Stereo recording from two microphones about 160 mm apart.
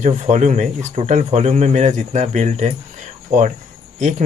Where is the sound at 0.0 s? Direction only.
50° right (ahead or behind).